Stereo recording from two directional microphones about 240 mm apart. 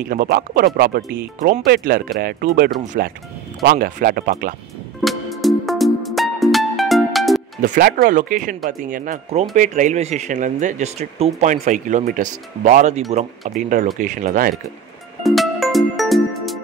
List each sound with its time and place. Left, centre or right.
0.0 s speech: right
5.0 s music: centre
7.6 s speech: right
15.2 s music: centre